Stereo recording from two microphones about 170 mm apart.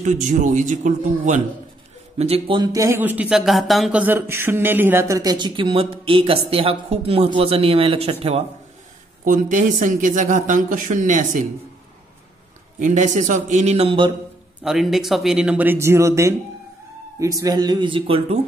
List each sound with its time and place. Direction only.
0.0 s a man's voice: 45° right (ahead or behind)
2.1 s speech: 35° right (ahead or behind)
9.2 s a man's voice: 50° right (ahead or behind)
12.7 s a man's voice: 45° right (ahead or behind); by 14.1 s 30° right (ahead or behind)
14.6 s speech: centre (ahead or behind); by 18.4 s 35° right (ahead or behind)